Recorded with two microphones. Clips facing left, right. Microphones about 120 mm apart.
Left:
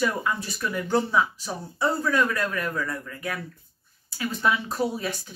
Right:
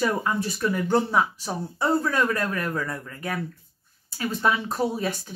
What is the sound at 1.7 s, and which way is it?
Speech, 40° right (ahead or behind).